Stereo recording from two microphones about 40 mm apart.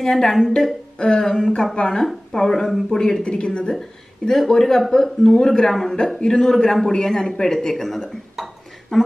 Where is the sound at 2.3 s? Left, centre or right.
Centre.